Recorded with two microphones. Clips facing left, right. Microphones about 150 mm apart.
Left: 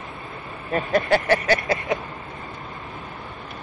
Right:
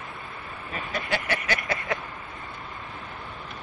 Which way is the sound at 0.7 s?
55° left (ahead or behind).